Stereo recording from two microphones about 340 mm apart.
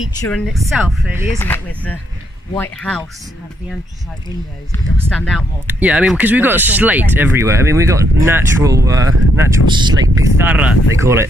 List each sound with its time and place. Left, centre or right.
0.2 s speech: centre
5.1 s speech: centre